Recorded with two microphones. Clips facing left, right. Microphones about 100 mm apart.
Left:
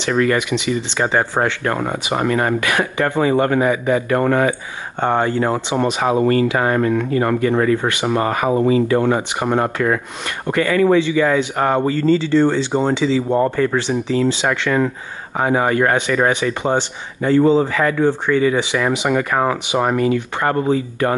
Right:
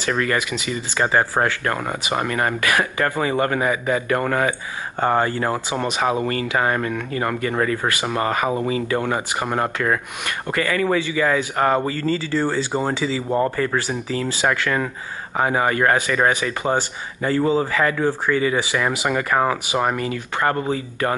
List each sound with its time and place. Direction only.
0.0 s speech: 15° left (ahead or behind)
0.9 s speech: centre (ahead or behind)
1.6 s speech: 20° left (ahead or behind)
5.0 s speech: centre (ahead or behind)
5.8 s speech: 25° left (ahead or behind)
6.1 s speech: 40° left (ahead or behind)
6.5 s speech: 20° left (ahead or behind)
11.1 s speech: centre (ahead or behind)
12.1 s speech: 5° right (ahead or behind)
15.8 s speech: 15° left (ahead or behind)
16.3 s speech: 5° right (ahead or behind)
19.7 s speech: 20° left (ahead or behind)